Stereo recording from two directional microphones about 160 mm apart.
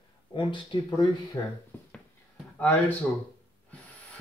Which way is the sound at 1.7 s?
15° left (ahead or behind).